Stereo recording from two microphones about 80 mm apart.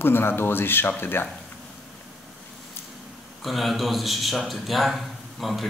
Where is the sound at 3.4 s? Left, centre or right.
Centre.